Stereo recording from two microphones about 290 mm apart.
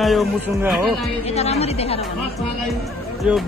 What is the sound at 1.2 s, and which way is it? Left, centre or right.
Speech, left.